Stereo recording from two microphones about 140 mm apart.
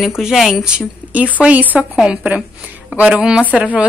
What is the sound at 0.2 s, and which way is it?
A woman's voice, 5° right (ahead or behind).